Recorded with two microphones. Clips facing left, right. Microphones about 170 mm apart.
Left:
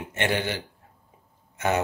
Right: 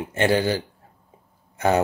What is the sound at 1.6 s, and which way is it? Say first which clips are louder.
Speech: right 5 dB; 35° right (ahead or behind).